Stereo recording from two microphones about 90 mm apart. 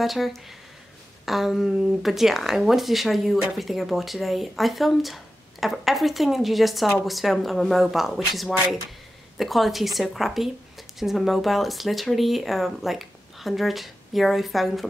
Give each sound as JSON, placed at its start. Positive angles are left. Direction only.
{"t": 0.0, "sound": "speech", "side_deg": 0}